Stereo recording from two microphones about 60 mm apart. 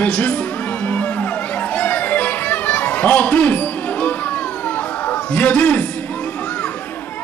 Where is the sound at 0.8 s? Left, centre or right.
Left.